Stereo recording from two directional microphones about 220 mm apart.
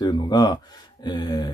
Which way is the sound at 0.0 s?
20° left (ahead or behind).